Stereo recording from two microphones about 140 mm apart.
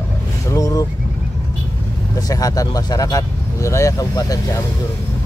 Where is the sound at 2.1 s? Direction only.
25° left (ahead or behind).